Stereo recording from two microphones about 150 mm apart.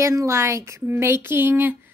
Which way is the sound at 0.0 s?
20° right (ahead or behind).